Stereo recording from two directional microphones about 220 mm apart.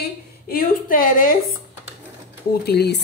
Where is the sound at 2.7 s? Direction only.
45° left (ahead or behind).